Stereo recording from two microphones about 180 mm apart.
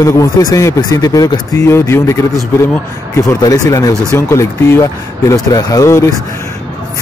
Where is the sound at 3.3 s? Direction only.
20° left (ahead or behind).